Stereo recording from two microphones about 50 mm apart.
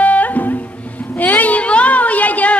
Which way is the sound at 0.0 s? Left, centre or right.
Left.